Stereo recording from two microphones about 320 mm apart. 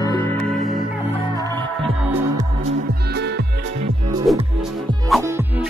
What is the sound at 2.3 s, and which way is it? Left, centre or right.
Music, centre.